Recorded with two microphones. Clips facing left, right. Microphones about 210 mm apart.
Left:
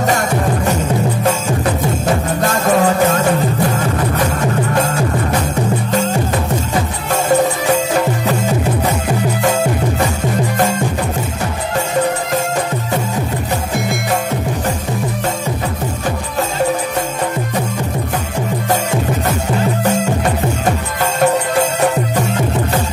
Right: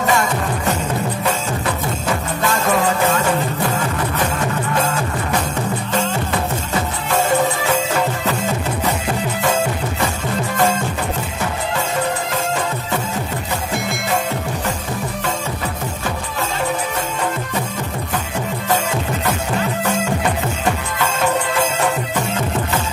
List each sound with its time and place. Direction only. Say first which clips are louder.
0.0 s music: left 2 dB; 45° left (ahead or behind)
2.4 s music: left 4 dB; 40° left (ahead or behind)
4.7 s music: left 4 dB; 40° left (ahead or behind)
9.4 s music: left 2 dB; 40° left (ahead or behind)
19.8 s music: left 4 dB; 40° left (ahead or behind)